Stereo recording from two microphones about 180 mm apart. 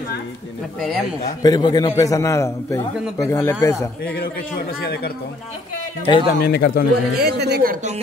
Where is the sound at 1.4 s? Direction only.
20° left (ahead or behind).